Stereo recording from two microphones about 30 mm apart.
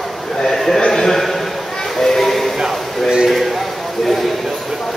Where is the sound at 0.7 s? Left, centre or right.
Centre.